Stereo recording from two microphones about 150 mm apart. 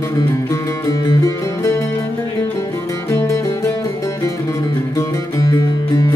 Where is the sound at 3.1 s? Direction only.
20° left (ahead or behind).